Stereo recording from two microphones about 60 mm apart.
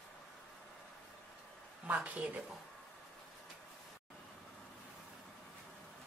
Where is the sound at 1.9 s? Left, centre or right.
Right.